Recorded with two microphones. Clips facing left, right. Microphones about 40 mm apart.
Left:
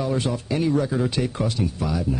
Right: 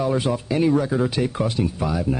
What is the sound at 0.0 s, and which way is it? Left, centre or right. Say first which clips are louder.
Speech: right 3 dB; centre.